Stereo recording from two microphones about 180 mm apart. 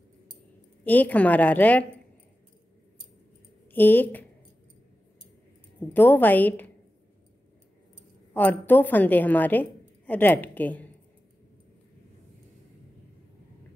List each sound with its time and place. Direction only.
0.8 s a woman's voice: 10° left (ahead or behind)
3.7 s a woman's voice: 10° left (ahead or behind)
5.9 s a woman's voice: 10° left (ahead or behind)
8.3 s a woman's voice: 10° left (ahead or behind)